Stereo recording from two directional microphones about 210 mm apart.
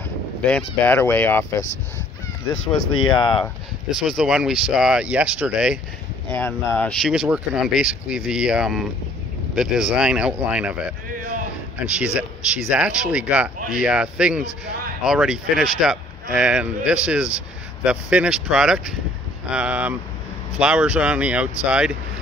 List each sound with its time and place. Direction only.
0.4 s fowl: 5° left (ahead or behind)
2.8 s speech: 85° left
3.2 s speech: 20° left (ahead or behind)
3.9 s speech: centre (ahead or behind)
6.3 s speech: 10° left (ahead or behind)
11.9 s speech: 5° right (ahead or behind)